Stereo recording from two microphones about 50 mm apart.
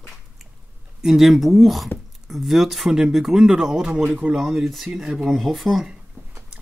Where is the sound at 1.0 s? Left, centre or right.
Centre.